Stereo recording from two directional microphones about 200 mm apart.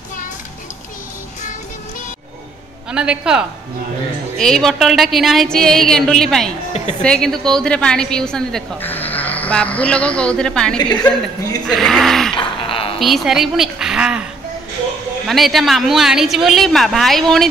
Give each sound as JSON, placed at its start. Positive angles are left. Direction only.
{"t": 2.9, "sound": "a woman's voice", "side_deg": -5}
{"t": 10.8, "sound": "a woman's voice", "side_deg": 20}
{"t": 11.6, "sound": "a woman's voice", "side_deg": 0}
{"t": 12.4, "sound": "a sound", "side_deg": 25}
{"t": 13.0, "sound": "a woman's voice", "side_deg": 0}
{"t": 15.2, "sound": "a woman's voice", "side_deg": 0}